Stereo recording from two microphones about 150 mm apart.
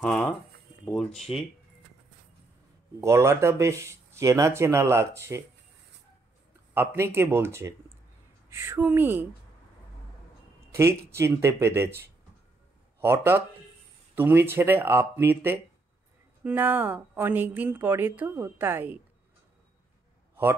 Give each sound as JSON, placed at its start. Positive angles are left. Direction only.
{"t": 0.0, "sound": "a sound", "side_deg": 5}
{"t": 0.8, "sound": "speech", "side_deg": 5}
{"t": 3.0, "sound": "speech", "side_deg": -20}
{"t": 6.7, "sound": "speech", "side_deg": -15}
{"t": 10.7, "sound": "a sound", "side_deg": -20}
{"t": 11.1, "sound": "speech", "side_deg": -15}
{"t": 13.0, "sound": "speech", "side_deg": -15}